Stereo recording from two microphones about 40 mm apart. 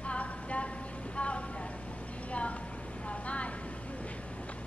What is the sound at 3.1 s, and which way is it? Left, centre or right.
Vehicle, left.